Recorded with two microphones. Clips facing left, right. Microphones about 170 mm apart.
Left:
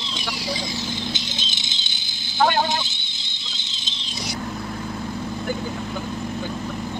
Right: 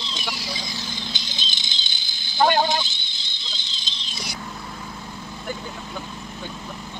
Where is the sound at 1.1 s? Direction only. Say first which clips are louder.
Left 4 dB; 20° left (ahead or behind).